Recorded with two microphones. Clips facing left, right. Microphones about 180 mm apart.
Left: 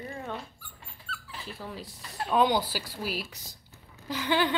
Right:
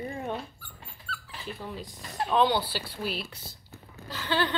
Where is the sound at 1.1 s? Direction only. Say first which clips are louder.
Right 2 dB; 45° left (ahead or behind).